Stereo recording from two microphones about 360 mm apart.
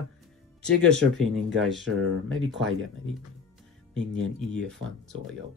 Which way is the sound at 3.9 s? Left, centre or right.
Right.